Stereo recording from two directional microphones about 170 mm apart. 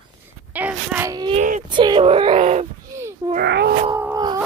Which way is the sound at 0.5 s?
10° right (ahead or behind).